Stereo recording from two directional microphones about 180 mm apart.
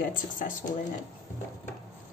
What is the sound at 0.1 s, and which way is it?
Speech, 50° left (ahead or behind).